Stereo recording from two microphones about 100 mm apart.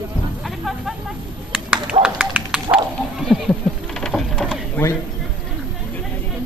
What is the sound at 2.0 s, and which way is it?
Speech, 10° right (ahead or behind).